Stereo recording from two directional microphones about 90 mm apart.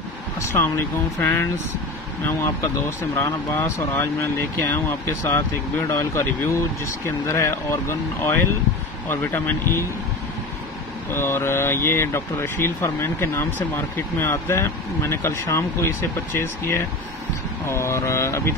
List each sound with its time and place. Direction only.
0.4 s speech: 30° left (ahead or behind)
3.2 s speech: 30° left (ahead or behind)
11.1 s speech: 30° left (ahead or behind)